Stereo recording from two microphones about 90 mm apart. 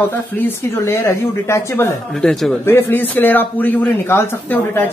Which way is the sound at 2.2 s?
10° left (ahead or behind).